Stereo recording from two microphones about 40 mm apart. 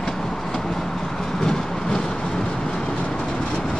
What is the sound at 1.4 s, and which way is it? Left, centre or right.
Vehicle, centre.